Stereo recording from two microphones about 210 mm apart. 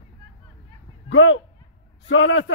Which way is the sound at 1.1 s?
70° left (ahead or behind).